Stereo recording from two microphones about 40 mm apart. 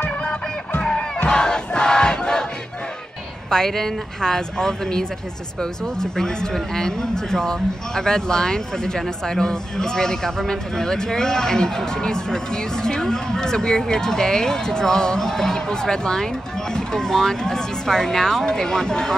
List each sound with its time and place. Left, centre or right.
0.0 s battle cry: left
3.4 s speech: centre